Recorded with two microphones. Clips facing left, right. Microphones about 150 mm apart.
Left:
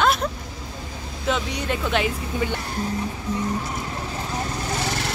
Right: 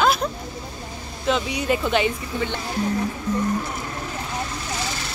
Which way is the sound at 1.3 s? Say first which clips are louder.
Right 3 dB; 5° right (ahead or behind).